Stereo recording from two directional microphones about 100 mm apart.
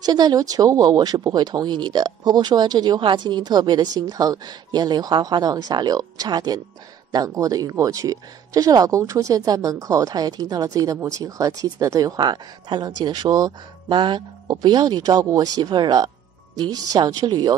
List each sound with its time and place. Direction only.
0.0 s speech: 40° right (ahead or behind)
12.2 s speech: 50° right (ahead or behind)